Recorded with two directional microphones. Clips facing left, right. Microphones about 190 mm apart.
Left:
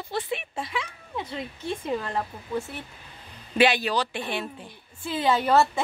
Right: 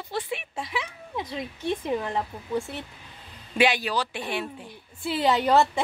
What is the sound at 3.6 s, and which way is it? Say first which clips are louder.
Speech: left 2 dB; 10° right (ahead or behind).